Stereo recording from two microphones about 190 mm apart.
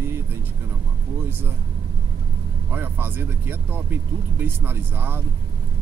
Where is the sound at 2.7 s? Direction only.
10° right (ahead or behind).